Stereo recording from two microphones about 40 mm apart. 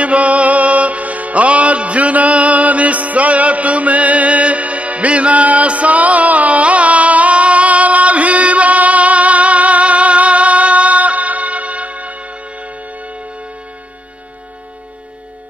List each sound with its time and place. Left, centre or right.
0.0 s music: right